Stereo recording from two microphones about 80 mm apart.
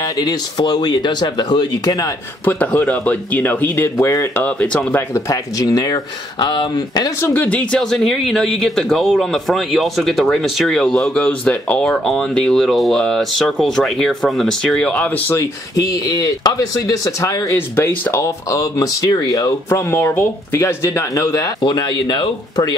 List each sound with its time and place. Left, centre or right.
0.2 s speech: left
2.4 s speech: left
4.5 s speech: left
5.1 s speech: left
6.4 s speech: left
7.2 s speech: left
7.8 s speech: centre
11.1 s speech: centre
11.8 s speech: centre
15.7 s speech: left
17.6 s speech: left
19.7 s speech: left
21.6 s speech: left